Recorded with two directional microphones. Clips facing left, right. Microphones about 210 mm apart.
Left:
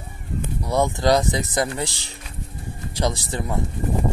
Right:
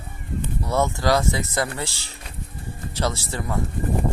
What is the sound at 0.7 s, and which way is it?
Speech, 15° left (ahead or behind).